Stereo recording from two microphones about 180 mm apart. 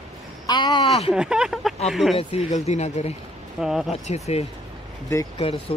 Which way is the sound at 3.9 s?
35° left (ahead or behind).